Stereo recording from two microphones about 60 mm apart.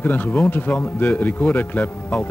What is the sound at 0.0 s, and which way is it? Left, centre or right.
Speech, left.